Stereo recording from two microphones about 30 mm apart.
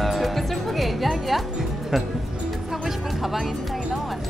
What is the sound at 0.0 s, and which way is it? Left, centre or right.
Music, centre.